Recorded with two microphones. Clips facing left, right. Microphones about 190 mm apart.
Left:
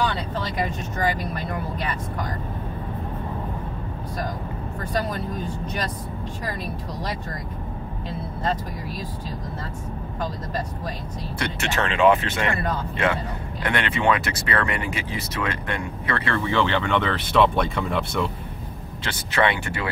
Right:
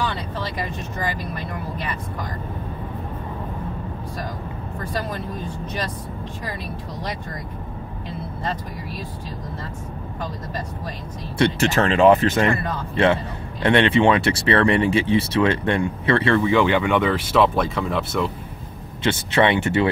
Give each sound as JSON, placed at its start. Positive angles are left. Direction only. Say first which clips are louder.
{"t": 11.3, "sound": "speech", "louder": "right 10 dB", "side_deg": -25}
{"t": 11.7, "sound": "speech", "louder": "right 2 dB", "side_deg": -40}
{"t": 12.9, "sound": "speech", "louder": "right 9 dB", "side_deg": -30}
{"t": 16.3, "sound": "speech", "louder": "right 5 dB", "side_deg": -15}
{"t": 19.0, "sound": "speech", "louder": "right 5 dB", "side_deg": -25}